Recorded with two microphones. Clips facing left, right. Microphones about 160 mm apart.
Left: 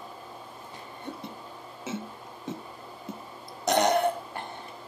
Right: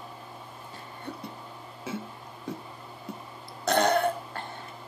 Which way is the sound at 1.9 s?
25° left (ahead or behind).